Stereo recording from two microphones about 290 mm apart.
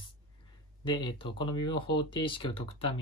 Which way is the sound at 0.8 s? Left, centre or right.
Centre.